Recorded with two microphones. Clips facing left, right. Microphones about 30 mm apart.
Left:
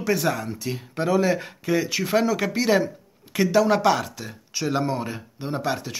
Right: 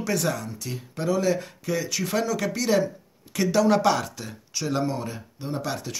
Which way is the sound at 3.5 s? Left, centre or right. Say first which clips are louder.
Left 1 dB; centre.